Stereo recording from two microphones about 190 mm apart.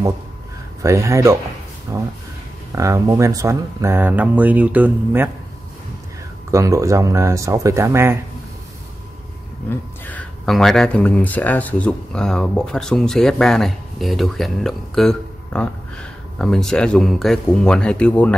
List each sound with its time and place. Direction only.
0.8 s speech: 15° right (ahead or behind)
6.5 s speech: 15° right (ahead or behind)
9.7 s speech: 10° left (ahead or behind)